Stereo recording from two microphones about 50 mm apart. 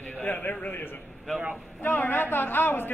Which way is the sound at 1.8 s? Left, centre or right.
Left.